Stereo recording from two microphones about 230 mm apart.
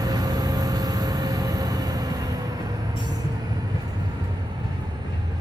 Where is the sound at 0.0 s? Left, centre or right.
Centre.